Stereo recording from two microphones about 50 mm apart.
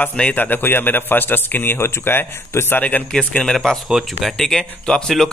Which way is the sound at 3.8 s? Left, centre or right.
Centre.